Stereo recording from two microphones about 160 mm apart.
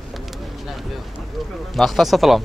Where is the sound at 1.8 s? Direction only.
Centre (ahead or behind).